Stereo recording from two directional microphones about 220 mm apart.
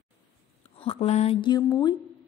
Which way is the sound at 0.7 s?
25° left (ahead or behind).